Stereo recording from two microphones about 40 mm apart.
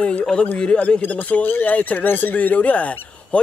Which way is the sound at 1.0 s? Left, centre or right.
Left.